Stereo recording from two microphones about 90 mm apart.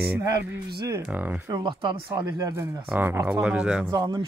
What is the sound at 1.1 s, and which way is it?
Speech, 20° right (ahead or behind).